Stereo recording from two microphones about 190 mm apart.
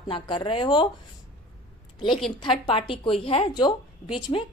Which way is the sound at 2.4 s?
30° left (ahead or behind).